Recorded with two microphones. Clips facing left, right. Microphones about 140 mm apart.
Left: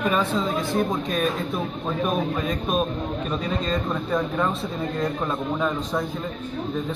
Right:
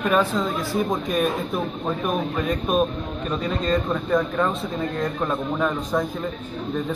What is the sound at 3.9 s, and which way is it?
A man's voice, centre (ahead or behind).